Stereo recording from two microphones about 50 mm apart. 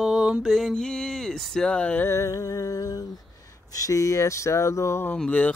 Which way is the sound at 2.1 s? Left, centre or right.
Left.